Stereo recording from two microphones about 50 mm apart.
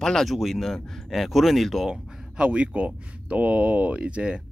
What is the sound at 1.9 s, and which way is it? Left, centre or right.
Speech, right.